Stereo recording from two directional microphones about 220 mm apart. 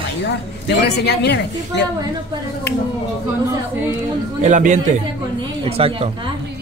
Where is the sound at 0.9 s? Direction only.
50° left (ahead or behind).